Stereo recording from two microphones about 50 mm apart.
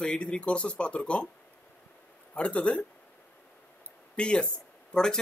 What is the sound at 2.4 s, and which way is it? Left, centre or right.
Speech, left.